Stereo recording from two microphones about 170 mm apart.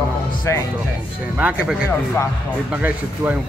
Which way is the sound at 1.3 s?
5° right (ahead or behind).